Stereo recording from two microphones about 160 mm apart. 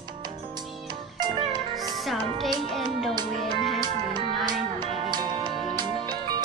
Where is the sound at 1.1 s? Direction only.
25° right (ahead or behind).